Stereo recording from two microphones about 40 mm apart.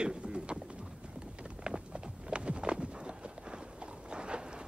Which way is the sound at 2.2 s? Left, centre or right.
Right.